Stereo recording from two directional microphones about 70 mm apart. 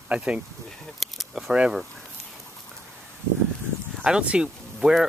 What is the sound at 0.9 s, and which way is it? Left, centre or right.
Keys jangling, centre.